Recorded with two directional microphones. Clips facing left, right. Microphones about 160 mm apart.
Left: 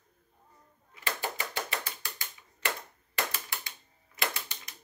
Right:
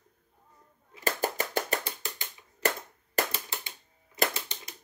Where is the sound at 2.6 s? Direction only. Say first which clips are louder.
Right 6 dB; 40° right (ahead or behind).